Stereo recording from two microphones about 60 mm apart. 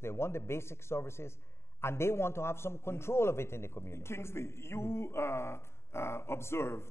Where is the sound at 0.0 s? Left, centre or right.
Left.